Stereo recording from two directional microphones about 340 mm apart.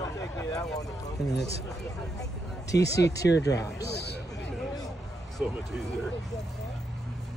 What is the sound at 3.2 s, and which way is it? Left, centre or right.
Speech, left.